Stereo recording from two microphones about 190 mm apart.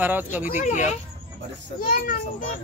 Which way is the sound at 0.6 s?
40° left (ahead or behind).